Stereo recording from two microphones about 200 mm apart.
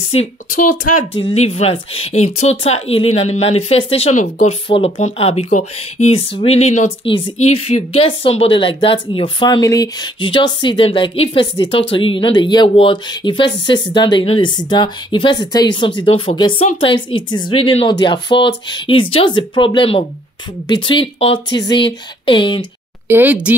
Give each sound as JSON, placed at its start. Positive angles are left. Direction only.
{"t": 1.2, "sound": "speech", "side_deg": 30}
{"t": 23.0, "sound": "speech", "side_deg": -10}